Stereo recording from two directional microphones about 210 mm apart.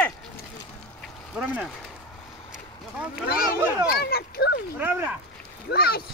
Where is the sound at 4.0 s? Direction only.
50° left (ahead or behind).